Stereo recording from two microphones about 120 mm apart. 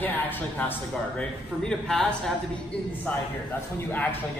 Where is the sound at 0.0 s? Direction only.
15° left (ahead or behind).